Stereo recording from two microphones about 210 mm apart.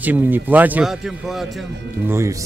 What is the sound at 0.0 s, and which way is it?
A man's voice, 10° right (ahead or behind).